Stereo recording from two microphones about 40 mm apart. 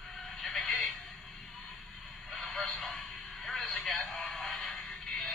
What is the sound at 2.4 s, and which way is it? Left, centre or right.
Radio, centre.